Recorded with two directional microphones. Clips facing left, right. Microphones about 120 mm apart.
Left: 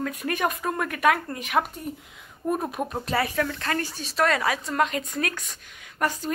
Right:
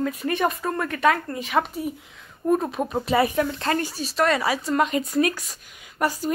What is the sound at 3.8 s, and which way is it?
Speech, 5° right (ahead or behind).